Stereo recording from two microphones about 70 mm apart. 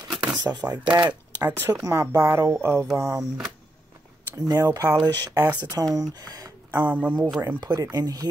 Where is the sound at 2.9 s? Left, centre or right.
Right.